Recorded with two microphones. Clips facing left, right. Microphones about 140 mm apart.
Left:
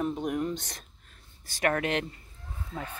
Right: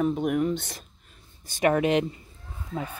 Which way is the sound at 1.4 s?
20° right (ahead or behind).